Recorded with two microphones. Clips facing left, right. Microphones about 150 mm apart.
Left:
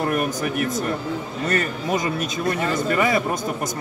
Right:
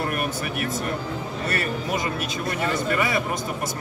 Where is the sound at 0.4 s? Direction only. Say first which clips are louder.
Left 4 dB; 40° left (ahead or behind).